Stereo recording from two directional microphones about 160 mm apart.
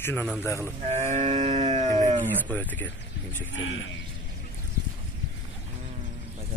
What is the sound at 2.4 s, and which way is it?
A man's voice, 10° left (ahead or behind).